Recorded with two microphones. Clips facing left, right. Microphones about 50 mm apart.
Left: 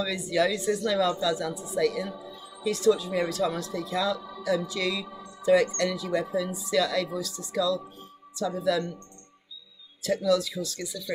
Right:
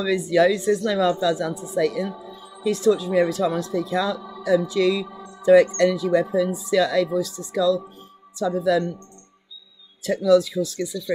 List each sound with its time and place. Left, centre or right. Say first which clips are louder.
0.0 s speech: right 7 dB; right
5.2 s music: right 7 dB; right
5.7 s speech: right 9 dB; right
8.6 s speech: right 6 dB; right
10.0 s speech: right 7 dB; right